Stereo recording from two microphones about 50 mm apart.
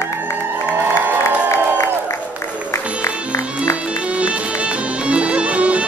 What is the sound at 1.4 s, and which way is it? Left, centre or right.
Crowd, left.